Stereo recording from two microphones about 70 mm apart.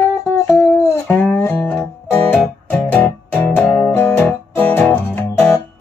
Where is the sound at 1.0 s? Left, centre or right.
Left.